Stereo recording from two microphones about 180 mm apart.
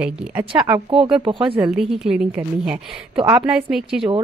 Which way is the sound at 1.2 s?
25° right (ahead or behind).